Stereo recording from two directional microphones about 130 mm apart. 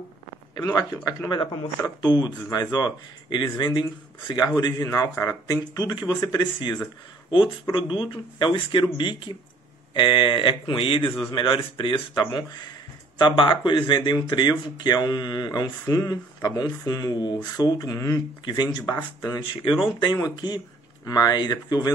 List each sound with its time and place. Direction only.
0.7 s speech: 30° left (ahead or behind)